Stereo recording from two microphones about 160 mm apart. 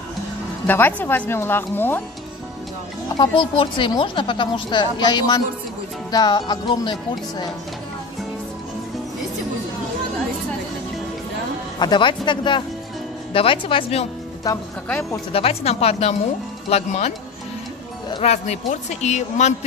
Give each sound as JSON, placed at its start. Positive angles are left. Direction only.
{"t": 0.7, "sound": "speech", "side_deg": 10}
{"t": 3.2, "sound": "speech", "side_deg": 30}
{"t": 11.8, "sound": "speech", "side_deg": 30}
{"t": 15.3, "sound": "speech", "side_deg": 40}
{"t": 18.2, "sound": "speech", "side_deg": 45}